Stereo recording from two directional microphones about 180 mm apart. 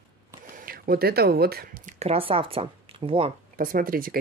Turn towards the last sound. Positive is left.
turn(degrees=-55)  # may be behind; listen again after turning